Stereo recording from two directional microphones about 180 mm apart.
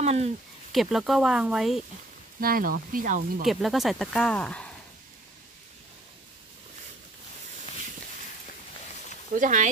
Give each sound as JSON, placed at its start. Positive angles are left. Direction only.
{"t": 0.0, "sound": "speech", "side_deg": -35}
{"t": 0.7, "sound": "speech", "side_deg": 0}
{"t": 2.4, "sound": "speech", "side_deg": -50}
{"t": 3.4, "sound": "speech", "side_deg": 0}
{"t": 9.3, "sound": "speech", "side_deg": -45}